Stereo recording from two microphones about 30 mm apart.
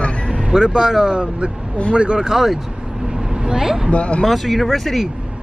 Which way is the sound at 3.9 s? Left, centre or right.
Left.